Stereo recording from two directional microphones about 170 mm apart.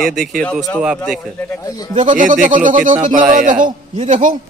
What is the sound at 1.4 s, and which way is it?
Speech, 15° left (ahead or behind).